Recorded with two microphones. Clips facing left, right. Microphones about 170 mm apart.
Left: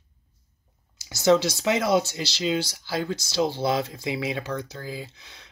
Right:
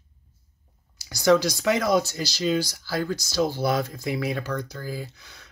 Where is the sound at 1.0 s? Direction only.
25° left (ahead or behind).